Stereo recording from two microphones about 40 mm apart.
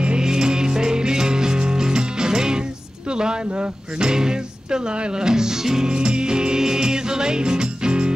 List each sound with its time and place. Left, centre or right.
0.0 s music: right
3.1 s a sound: right
3.6 s speech: right
5.9 s music: right